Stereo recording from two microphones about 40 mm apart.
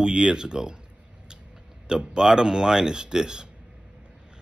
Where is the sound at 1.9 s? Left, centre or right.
Centre.